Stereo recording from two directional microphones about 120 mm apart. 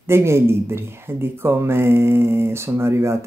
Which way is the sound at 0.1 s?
20° right (ahead or behind).